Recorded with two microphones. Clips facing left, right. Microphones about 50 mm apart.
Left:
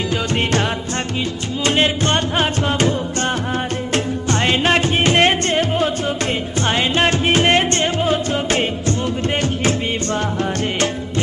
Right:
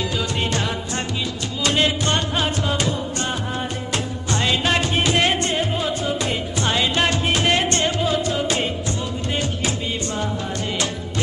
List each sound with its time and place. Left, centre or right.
1.6 s music: left
6.6 s music: left